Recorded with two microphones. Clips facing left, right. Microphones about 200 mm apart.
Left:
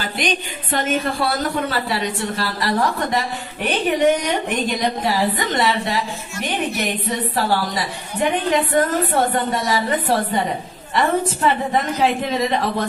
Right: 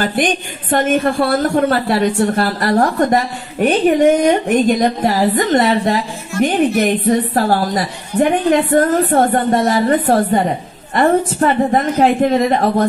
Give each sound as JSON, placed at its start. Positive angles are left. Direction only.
{"t": 0.0, "sound": "a woman's voice", "side_deg": -50}